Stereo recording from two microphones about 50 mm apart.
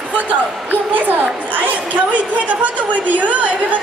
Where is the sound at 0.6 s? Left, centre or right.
Right.